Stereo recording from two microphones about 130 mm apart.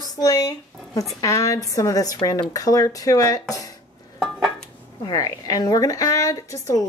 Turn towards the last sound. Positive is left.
turn(degrees=25)  # may be behind; listen again after turning